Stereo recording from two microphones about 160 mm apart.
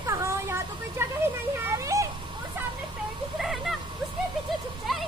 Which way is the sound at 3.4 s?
Centre (ahead or behind).